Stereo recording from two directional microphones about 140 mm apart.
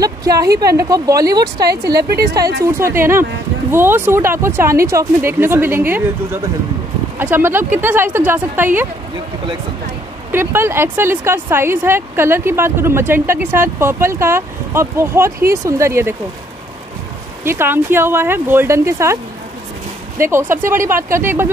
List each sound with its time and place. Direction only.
0.0 s speech: 25° right (ahead or behind)
7.2 s speech: 15° right (ahead or behind)
10.3 s speech: 15° right (ahead or behind)
17.4 s speech: 15° right (ahead or behind)
20.2 s speech: 20° right (ahead or behind)